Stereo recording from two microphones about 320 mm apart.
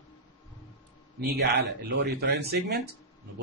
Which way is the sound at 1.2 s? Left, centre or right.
Right.